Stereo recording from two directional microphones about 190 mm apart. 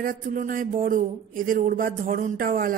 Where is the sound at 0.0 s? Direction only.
45° right (ahead or behind).